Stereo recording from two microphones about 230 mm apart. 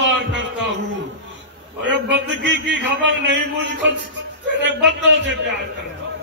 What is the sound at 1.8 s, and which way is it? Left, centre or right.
A man's voice, right.